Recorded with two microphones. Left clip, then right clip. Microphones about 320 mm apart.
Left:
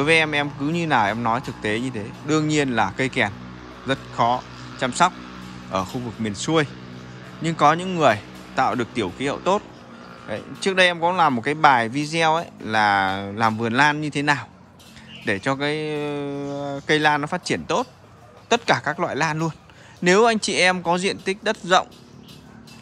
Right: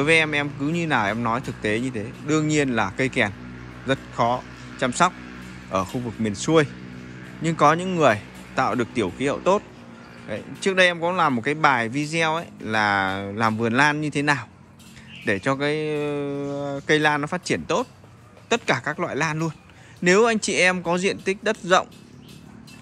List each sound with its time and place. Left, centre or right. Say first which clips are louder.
0.0 s a man's voice: left 1 dB; centre